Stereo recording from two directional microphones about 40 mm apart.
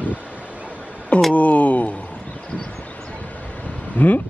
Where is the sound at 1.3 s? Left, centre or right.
Left.